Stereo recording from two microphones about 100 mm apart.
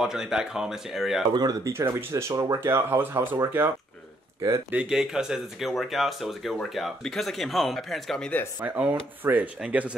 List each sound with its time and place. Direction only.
0.0 s speech: 5° right (ahead or behind)
1.3 s speech: 40° right (ahead or behind); by 3.7 s 20° right (ahead or behind)
4.6 s speech: 10° right (ahead or behind)
8.6 s speech: 15° right (ahead or behind)